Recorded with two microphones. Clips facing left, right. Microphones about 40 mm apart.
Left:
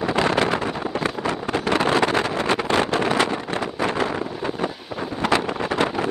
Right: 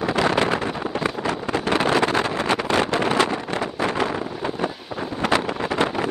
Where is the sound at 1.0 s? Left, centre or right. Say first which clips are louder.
Right 1 dB; left.